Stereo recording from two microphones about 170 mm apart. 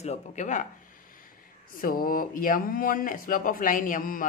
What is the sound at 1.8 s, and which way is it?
Speech, 55° left (ahead or behind).